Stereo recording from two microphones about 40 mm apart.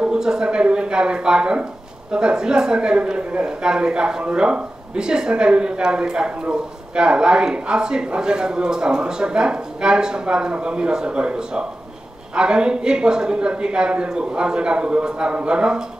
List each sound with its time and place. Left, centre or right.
0.0 s a man's voice: centre